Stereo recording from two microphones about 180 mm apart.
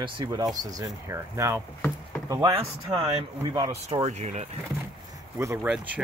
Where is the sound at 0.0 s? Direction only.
25° right (ahead or behind).